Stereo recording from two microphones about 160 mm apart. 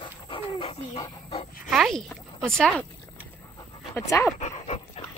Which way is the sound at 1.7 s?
Centre (ahead or behind).